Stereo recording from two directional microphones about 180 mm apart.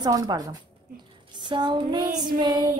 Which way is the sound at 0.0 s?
20° right (ahead or behind).